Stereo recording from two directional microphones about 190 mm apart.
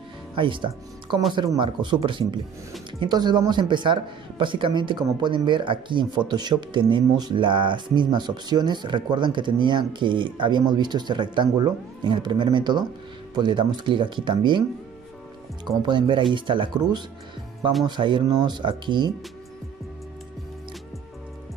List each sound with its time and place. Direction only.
0.4 s speech: 25° right (ahead or behind)
15.6 s speech: 25° right (ahead or behind)